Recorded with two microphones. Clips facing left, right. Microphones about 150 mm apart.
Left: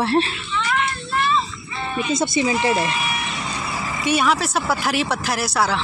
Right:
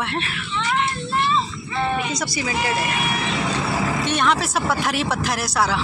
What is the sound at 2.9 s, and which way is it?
Vehicle, 60° right (ahead or behind).